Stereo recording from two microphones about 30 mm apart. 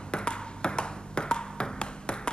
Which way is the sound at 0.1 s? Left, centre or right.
Left.